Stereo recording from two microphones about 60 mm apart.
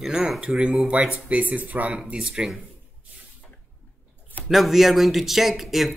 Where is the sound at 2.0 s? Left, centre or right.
Centre.